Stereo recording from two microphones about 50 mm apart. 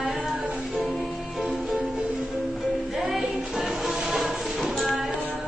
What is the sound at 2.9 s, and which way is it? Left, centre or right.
Music, centre.